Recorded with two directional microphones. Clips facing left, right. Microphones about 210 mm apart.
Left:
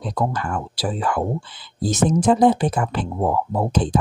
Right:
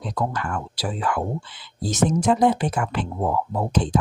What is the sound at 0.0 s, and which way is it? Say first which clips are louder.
Speech: left 3 dB; 35° left (ahead or behind).